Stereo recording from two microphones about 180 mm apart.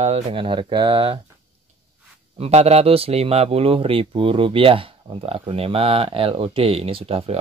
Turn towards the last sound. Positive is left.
turn(degrees=-35)  # may be behind; listen again after turning